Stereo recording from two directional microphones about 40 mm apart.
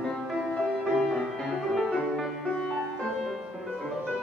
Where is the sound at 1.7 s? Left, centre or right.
Centre.